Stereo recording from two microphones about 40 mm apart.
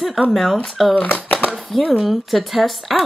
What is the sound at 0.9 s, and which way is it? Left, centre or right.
Speech, left.